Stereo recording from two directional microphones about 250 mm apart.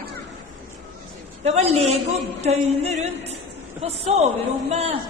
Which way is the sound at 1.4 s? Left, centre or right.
Right.